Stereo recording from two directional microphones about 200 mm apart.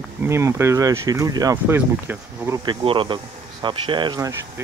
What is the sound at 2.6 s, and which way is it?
Speech, 25° right (ahead or behind).